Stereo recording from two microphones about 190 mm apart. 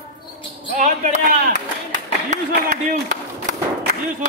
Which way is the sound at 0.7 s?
40° right (ahead or behind).